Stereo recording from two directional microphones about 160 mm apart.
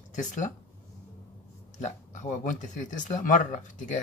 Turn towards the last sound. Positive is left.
turn(degrees=50)  # may be behind; listen again after turning